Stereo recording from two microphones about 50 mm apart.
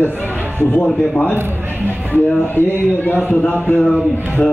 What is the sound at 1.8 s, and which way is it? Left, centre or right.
A man's voice, left.